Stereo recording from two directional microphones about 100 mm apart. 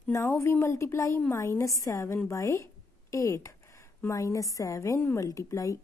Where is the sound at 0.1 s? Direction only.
25° left (ahead or behind).